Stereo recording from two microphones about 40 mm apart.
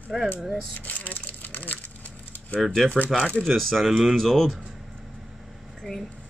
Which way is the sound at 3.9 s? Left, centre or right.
Centre.